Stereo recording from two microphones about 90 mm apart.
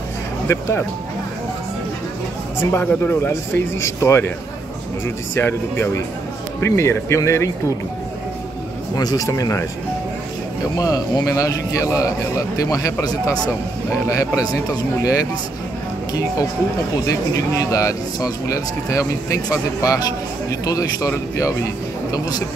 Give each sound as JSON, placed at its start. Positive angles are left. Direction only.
{"t": 0.5, "sound": "speech", "side_deg": 30}
{"t": 2.6, "sound": "speech", "side_deg": 25}
{"t": 8.9, "sound": "speech", "side_deg": 45}
{"t": 10.8, "sound": "speech", "side_deg": 45}
{"t": 16.1, "sound": "speech", "side_deg": 40}